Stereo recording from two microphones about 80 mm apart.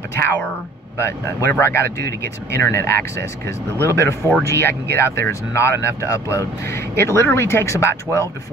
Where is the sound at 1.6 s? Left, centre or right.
Left.